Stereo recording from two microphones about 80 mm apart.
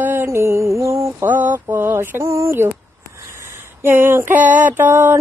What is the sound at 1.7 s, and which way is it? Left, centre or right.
Speech, right.